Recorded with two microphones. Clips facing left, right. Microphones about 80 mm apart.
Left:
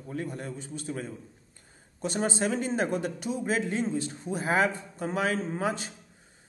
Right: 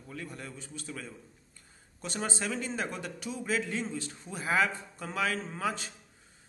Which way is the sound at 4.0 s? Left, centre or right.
Left.